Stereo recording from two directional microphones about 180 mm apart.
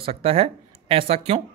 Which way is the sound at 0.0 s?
35° right (ahead or behind).